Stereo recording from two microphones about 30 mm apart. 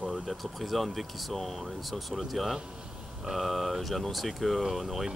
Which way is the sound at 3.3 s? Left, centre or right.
Centre.